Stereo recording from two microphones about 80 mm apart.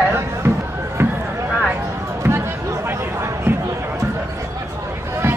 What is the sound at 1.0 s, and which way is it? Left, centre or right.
Run, right.